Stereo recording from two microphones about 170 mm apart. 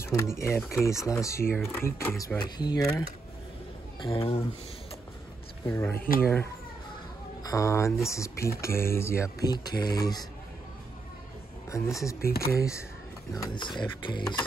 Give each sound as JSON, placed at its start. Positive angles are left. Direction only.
{"t": 0.0, "sound": "speech", "side_deg": 15}
{"t": 4.0, "sound": "speech", "side_deg": 30}
{"t": 5.7, "sound": "speech", "side_deg": 15}
{"t": 5.9, "sound": "speech", "side_deg": 60}
{"t": 6.2, "sound": "speech", "side_deg": 15}
{"t": 11.7, "sound": "speech", "side_deg": 20}